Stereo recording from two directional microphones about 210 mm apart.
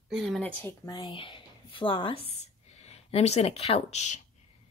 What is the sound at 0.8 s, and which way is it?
A woman's voice, 20° left (ahead or behind).